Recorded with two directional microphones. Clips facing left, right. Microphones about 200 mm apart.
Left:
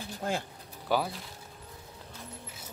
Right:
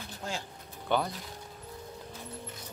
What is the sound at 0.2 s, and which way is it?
Speech, 55° left (ahead or behind).